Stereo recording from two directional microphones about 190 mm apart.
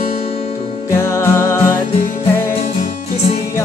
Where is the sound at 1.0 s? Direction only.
15° left (ahead or behind).